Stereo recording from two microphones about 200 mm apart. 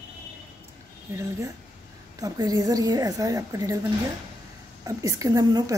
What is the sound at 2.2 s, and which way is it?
A woman's voice, 20° right (ahead or behind).